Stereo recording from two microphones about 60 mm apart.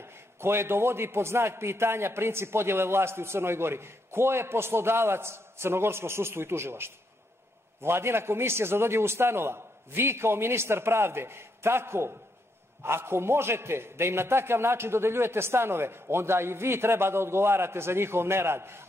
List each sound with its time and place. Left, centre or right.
0.0 s a man's voice: right